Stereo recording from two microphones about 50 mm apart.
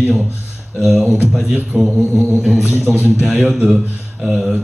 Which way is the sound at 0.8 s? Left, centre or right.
Centre.